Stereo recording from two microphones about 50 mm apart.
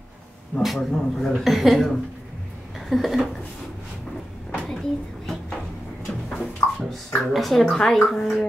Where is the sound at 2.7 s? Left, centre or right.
Centre.